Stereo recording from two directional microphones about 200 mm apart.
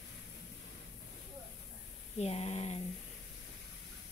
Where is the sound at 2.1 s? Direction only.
30° left (ahead or behind).